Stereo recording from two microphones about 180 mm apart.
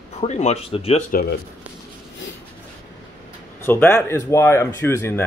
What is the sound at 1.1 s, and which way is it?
Speech, 55° left (ahead or behind).